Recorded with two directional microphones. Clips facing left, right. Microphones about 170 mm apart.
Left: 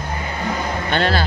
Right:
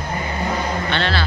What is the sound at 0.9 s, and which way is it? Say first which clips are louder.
Speech: left 5 dB; 45° left (ahead or behind).